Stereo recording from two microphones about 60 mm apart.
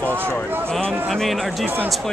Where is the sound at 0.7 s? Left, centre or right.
Centre.